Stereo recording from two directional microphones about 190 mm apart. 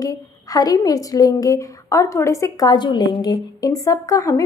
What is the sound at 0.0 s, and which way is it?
A woman's voice, 20° left (ahead or behind).